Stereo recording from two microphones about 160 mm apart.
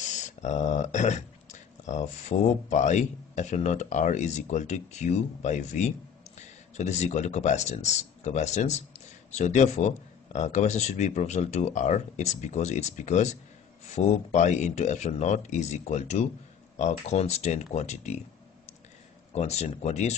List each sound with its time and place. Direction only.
0.4 s speech: 45° left (ahead or behind)
19.3 s speech: 45° left (ahead or behind)